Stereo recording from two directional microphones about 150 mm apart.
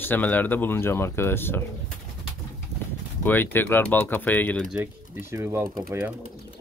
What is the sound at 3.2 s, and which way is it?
Speech, 15° left (ahead or behind).